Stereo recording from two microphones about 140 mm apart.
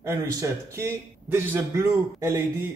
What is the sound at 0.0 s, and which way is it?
A man's voice, 20° right (ahead or behind).